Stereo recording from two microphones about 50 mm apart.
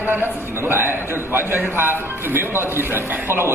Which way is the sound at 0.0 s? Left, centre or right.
Right.